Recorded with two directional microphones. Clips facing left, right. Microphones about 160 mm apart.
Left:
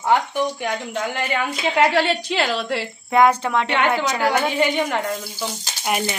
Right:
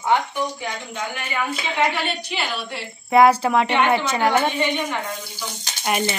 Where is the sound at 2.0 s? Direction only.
90° left.